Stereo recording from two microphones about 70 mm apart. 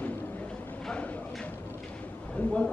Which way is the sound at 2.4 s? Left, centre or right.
Left.